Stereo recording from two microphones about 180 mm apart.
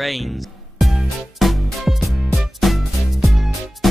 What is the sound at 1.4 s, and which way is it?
Music, centre (ahead or behind).